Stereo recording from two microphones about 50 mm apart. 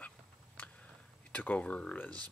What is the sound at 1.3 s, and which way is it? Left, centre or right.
Speech, left.